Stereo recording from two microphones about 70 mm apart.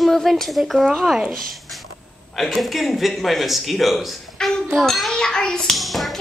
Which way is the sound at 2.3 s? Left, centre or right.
Centre.